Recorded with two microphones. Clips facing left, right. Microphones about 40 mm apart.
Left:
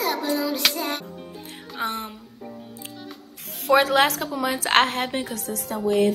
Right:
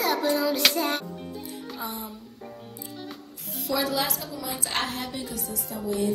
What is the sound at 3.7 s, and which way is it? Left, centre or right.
A woman's voice, left.